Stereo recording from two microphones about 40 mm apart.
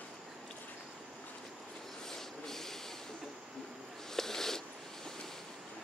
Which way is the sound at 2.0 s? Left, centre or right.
Centre.